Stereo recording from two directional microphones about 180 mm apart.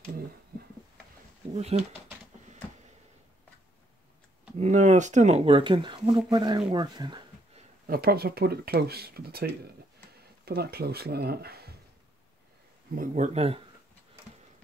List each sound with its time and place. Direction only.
1.5 s speech: 35° right (ahead or behind)
4.6 s speech: 40° right (ahead or behind); by 6.6 s 25° right (ahead or behind)
6.7 s a sound: 25° right (ahead or behind)
7.8 s speech: 55° right (ahead or behind)
12.9 s speech: 45° right (ahead or behind)